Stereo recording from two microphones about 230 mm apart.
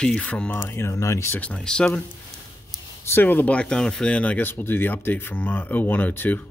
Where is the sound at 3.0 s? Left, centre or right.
Centre.